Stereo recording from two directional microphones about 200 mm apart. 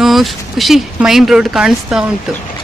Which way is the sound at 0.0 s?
Centre (ahead or behind).